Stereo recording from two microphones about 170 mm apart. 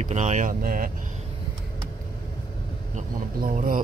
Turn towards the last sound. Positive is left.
turn(degrees=-55)  # may be behind; listen again after turning